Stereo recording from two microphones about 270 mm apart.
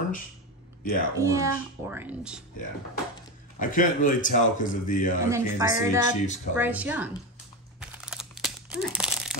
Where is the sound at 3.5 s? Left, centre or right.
Left.